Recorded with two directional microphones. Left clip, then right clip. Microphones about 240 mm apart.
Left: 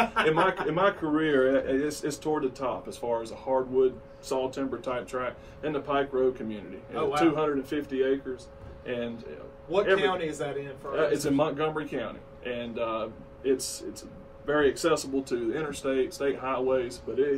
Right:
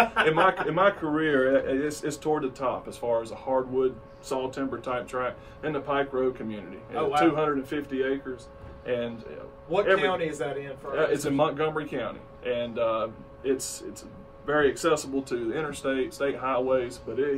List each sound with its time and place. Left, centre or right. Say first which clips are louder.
0.1 s speech: right 2 dB; centre